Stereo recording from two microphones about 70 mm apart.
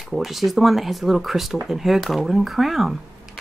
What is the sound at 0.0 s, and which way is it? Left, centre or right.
Speech, centre.